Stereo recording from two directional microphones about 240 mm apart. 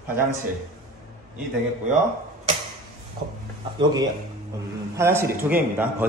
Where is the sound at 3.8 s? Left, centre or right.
Centre.